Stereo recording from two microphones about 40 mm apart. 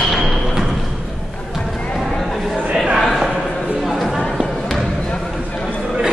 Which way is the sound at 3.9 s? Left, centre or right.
Centre.